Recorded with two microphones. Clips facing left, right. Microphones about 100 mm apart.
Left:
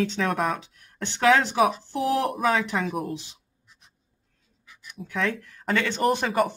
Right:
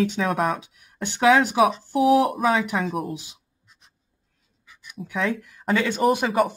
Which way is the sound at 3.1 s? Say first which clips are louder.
Even; 10° right (ahead or behind).